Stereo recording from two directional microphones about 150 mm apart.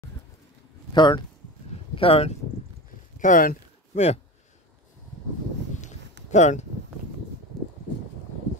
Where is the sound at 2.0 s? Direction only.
40° left (ahead or behind).